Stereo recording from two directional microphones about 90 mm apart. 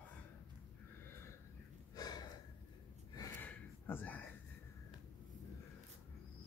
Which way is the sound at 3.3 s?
20° left (ahead or behind).